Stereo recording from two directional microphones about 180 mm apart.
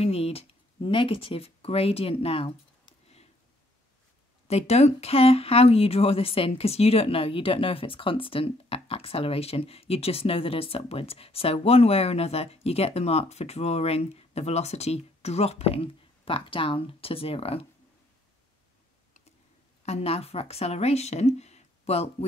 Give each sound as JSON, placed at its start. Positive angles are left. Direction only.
{"t": 0.0, "sound": "speech", "side_deg": 35}
{"t": 4.5, "sound": "speech", "side_deg": 35}
{"t": 19.8, "sound": "a woman's voice", "side_deg": 35}